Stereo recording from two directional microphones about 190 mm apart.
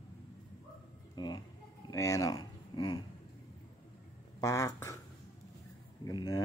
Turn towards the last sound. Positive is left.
turn(degrees=20)  # may be behind; listen again after turning